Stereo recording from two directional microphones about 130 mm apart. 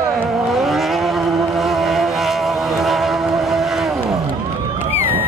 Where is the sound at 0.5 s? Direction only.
Centre (ahead or behind).